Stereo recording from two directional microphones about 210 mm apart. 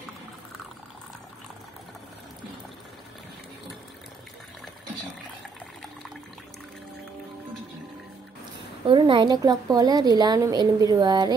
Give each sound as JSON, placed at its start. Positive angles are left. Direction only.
{"t": 8.8, "sound": "a woman's voice", "side_deg": -25}